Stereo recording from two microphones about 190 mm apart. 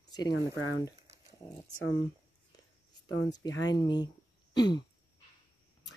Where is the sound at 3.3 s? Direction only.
20° left (ahead or behind).